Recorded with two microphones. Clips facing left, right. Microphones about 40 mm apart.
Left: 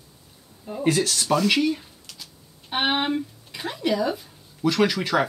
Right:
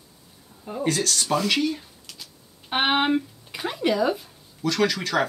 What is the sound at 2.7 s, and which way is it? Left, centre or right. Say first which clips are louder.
Speech: right 2 dB; centre.